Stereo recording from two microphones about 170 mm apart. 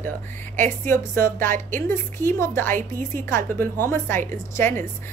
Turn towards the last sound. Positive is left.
turn(degrees=15)  # may be behind; listen again after turning